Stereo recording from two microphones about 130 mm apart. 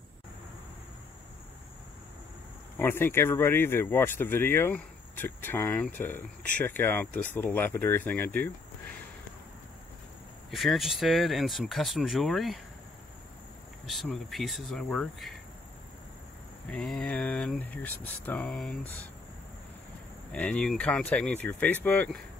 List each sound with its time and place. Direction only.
2.8 s speech: 15° left (ahead or behind)
10.5 s speech: centre (ahead or behind)
13.8 s speech: centre (ahead or behind)
16.7 s speech: 10° left (ahead or behind)
18.5 s speech: centre (ahead or behind)
20.3 s speech: 10° left (ahead or behind)